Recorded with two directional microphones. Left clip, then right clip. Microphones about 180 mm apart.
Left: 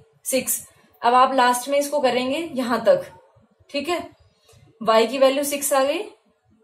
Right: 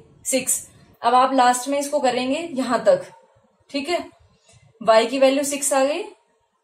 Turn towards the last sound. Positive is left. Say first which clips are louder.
# even
turn(degrees=30)  # may be behind; listen again after turning